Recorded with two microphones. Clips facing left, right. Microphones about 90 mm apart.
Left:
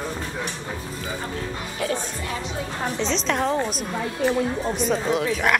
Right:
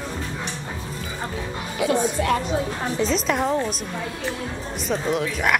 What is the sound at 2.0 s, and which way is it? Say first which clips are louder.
Speech: right 9 dB; 60° right (ahead or behind).